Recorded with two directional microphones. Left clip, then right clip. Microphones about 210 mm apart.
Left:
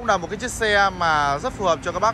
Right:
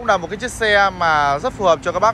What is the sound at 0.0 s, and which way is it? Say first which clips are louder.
Speech: right 4 dB; 15° left (ahead or behind).